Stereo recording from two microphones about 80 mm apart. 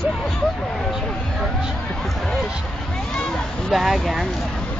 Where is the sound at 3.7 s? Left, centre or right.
Centre.